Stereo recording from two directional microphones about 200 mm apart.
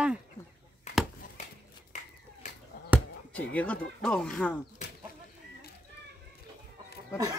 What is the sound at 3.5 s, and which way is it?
Speech, 5° left (ahead or behind).